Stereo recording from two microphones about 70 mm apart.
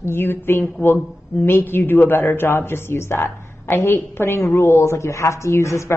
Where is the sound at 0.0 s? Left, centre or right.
Left.